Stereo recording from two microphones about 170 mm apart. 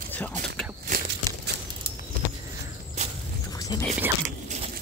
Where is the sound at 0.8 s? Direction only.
55° right (ahead or behind).